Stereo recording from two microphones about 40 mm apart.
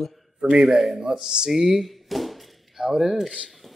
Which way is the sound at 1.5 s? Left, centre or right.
Centre.